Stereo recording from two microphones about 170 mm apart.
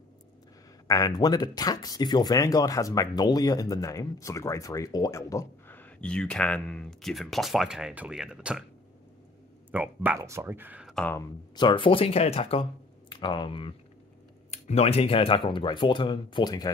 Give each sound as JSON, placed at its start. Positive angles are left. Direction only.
{"t": 0.8, "sound": "speech", "side_deg": 20}
{"t": 9.7, "sound": "speech", "side_deg": -10}
{"t": 11.0, "sound": "speech", "side_deg": 10}
{"t": 11.5, "sound": "speech", "side_deg": 30}